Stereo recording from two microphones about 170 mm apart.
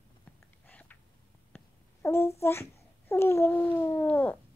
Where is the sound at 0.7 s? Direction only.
10° left (ahead or behind).